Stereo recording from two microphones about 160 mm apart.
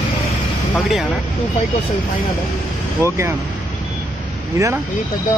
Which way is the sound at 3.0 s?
15° right (ahead or behind).